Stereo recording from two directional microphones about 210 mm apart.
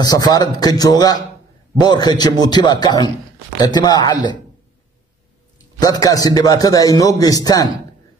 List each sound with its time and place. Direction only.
0.0 s a man's voice: 20° left (ahead or behind)
5.8 s a man's voice: 15° left (ahead or behind)